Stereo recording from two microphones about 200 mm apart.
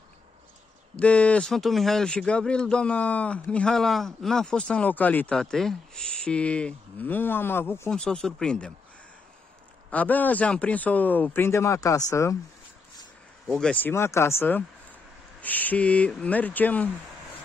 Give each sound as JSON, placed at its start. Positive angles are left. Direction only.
{"t": 0.9, "sound": "speech", "side_deg": 5}
{"t": 9.8, "sound": "speech", "side_deg": 10}
{"t": 13.5, "sound": "speech", "side_deg": 5}